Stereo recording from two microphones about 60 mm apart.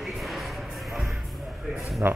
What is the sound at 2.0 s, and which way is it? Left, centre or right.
Speech, right.